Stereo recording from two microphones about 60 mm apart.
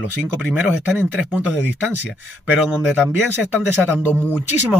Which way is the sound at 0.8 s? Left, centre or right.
Right.